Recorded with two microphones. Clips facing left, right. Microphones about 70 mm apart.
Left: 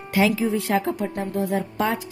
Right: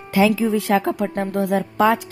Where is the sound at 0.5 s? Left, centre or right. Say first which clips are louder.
Right 4 dB; right.